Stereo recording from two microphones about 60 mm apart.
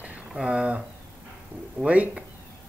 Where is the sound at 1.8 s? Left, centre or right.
Right.